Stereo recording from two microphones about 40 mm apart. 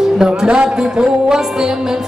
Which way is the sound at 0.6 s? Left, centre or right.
Right.